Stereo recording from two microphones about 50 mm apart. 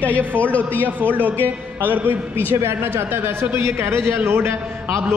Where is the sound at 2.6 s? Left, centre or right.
Right.